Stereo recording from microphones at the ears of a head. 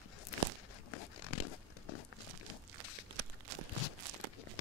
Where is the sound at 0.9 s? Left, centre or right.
Left.